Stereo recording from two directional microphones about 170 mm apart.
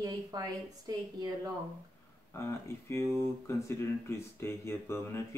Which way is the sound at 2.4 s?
15° left (ahead or behind).